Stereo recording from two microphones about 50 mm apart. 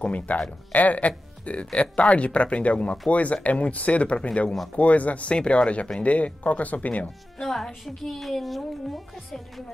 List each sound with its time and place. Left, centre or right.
0.0 s speech: left
7.3 s speech: centre